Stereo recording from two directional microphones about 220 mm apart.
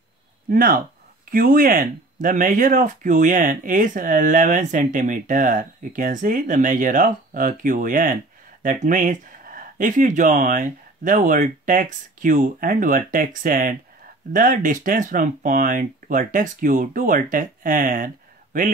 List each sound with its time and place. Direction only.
0.5 s speech: 40° right (ahead or behind)